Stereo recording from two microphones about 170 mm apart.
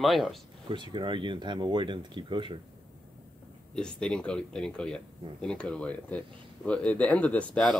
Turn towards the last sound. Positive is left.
turn(degrees=0)  # may be behind; listen again after turning